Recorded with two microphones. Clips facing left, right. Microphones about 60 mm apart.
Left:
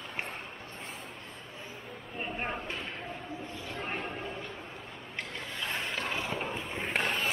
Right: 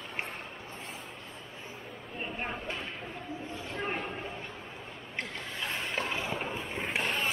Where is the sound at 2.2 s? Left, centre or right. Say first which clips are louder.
Left 1 dB; centre.